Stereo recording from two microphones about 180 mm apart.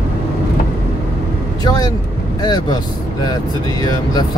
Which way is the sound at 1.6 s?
20° left (ahead or behind).